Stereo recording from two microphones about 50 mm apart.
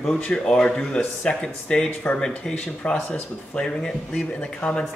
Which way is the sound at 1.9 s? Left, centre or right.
Left.